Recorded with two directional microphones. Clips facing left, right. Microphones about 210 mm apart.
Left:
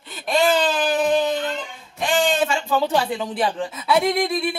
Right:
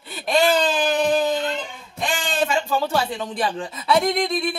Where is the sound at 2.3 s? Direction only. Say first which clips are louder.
Left 1 dB; 15° left (ahead or behind).